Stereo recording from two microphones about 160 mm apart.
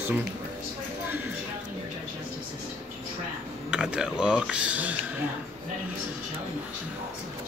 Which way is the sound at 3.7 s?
5° right (ahead or behind).